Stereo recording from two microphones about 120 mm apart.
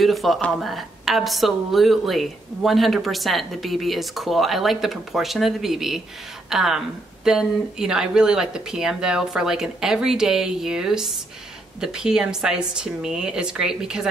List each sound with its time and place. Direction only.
0.0 s speech: centre (ahead or behind)